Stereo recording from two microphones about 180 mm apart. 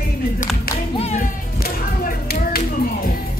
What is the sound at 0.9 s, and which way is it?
Music, 35° left (ahead or behind).